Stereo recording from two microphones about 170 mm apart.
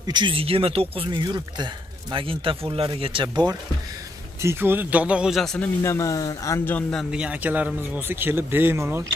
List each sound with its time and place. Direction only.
0.0 s speech: 25° right (ahead or behind)
4.4 s speech: 15° right (ahead or behind); by 5.7 s centre (ahead or behind)
5.8 s speech: 20° left (ahead or behind); by 9.0 s 15° right (ahead or behind)